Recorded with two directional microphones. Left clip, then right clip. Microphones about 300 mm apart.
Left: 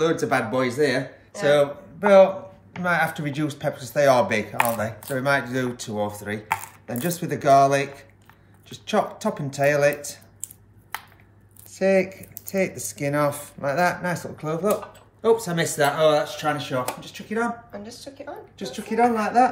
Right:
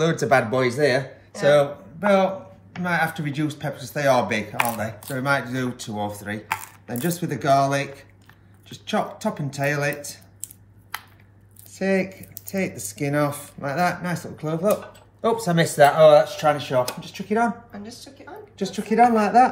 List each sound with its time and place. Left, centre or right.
0.0 s speech: right
1.5 s speech: centre
8.9 s speech: centre
11.8 s speech: centre
15.2 s speech: centre
17.6 s a woman's voice: centre
18.6 s speech: right